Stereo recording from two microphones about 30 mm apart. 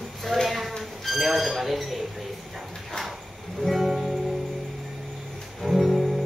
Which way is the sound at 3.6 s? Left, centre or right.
Centre.